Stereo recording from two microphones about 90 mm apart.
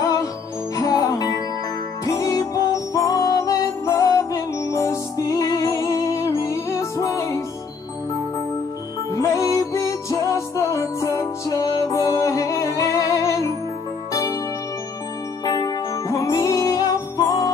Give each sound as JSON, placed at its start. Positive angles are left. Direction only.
{"t": 0.0, "sound": "music", "side_deg": 40}
{"t": 9.1, "sound": "music", "side_deg": 35}
{"t": 15.4, "sound": "music", "side_deg": 45}